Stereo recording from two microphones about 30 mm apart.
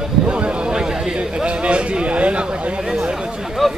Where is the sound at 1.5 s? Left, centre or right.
Right.